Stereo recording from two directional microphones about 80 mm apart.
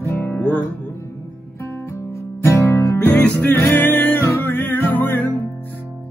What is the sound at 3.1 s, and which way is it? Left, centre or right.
Music, centre.